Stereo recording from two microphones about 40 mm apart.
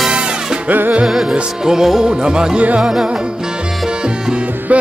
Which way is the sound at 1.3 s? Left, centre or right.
Centre.